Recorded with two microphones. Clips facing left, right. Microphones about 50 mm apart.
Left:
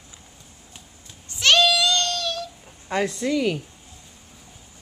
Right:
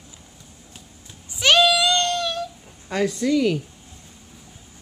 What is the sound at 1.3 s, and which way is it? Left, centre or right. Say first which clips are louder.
Child singing: right 1 dB; centre.